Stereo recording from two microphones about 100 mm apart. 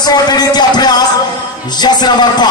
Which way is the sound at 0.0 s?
45° left (ahead or behind).